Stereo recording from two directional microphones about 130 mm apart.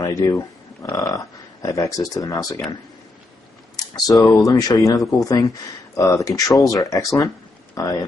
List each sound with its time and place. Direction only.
0.0 s speech: 25° left (ahead or behind)
3.7 s speech: 30° left (ahead or behind)